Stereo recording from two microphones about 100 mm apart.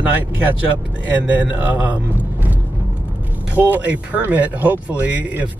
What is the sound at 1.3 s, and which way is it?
Speech, 15° right (ahead or behind).